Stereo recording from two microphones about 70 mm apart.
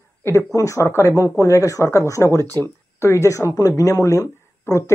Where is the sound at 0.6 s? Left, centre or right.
Left.